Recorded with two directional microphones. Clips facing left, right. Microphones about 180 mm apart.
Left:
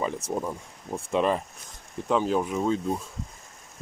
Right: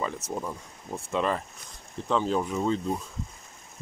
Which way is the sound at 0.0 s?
15° left (ahead or behind).